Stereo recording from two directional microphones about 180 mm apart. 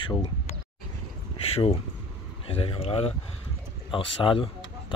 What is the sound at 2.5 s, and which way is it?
Speech, 30° left (ahead or behind).